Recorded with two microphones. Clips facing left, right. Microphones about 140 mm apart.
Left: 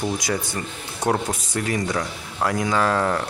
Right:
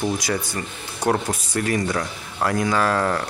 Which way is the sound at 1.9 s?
Centre (ahead or behind).